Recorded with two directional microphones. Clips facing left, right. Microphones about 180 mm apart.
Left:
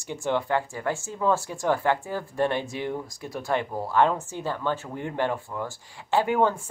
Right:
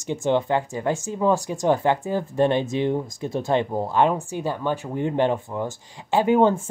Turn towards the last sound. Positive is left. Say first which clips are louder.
# right 5 dB
turn(degrees=-20)  # may be behind; listen again after turning